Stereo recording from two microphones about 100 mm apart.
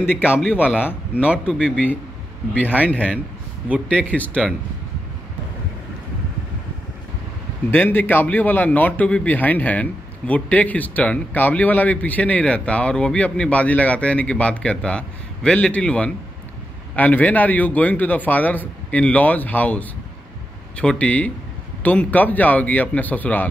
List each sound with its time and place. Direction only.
0.0 s a man's voice: 20° left (ahead or behind)
1.1 s speech: 10° right (ahead or behind)
1.6 s a man's voice: 15° left (ahead or behind)
7.7 s a man's voice: 20° left (ahead or behind)